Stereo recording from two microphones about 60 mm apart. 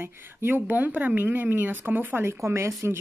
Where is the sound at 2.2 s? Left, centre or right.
Right.